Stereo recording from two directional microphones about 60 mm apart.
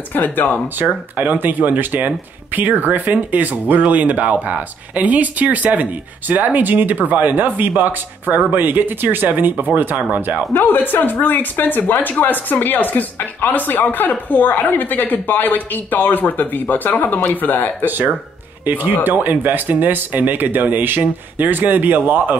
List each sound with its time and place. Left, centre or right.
0.1 s speech: left
0.8 s speech: right
10.5 s speech: left
17.8 s speech: right